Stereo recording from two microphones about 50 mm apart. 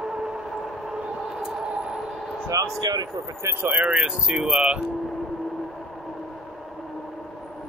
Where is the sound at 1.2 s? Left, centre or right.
Centre.